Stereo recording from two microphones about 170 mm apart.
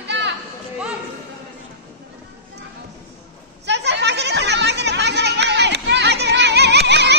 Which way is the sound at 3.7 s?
90° right.